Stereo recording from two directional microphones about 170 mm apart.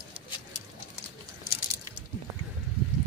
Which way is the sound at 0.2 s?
30° right (ahead or behind).